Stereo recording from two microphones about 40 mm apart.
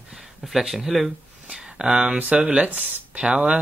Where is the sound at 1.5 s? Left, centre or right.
Right.